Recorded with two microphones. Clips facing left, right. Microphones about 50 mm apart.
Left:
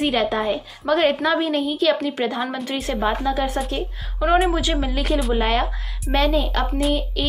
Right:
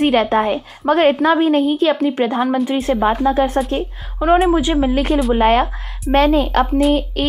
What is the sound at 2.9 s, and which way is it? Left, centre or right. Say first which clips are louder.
Speech: right 6 dB; centre.